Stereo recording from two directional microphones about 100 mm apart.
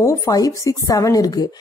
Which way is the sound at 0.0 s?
30° left (ahead or behind).